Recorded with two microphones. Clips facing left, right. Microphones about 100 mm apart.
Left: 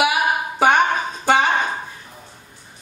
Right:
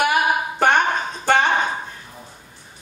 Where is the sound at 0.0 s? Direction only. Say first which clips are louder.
Even; 5° left (ahead or behind).